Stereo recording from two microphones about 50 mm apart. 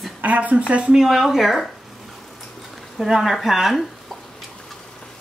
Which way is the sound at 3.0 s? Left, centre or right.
Centre.